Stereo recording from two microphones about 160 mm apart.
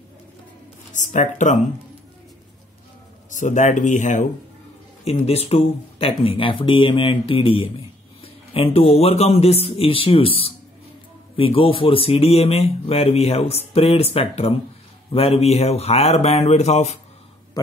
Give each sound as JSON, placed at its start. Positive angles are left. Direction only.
{"t": 1.1, "sound": "speech", "side_deg": 50}
{"t": 3.3, "sound": "speech", "side_deg": 50}
{"t": 5.2, "sound": "speech", "side_deg": 40}